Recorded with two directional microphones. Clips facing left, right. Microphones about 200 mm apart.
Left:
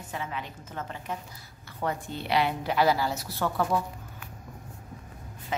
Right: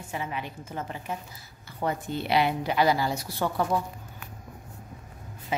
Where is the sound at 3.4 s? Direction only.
10° right (ahead or behind).